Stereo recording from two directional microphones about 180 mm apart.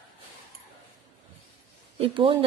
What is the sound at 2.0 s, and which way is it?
Speech, 30° right (ahead or behind).